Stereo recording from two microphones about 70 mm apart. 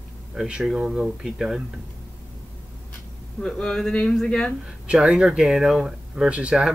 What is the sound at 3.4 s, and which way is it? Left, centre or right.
Speech, centre.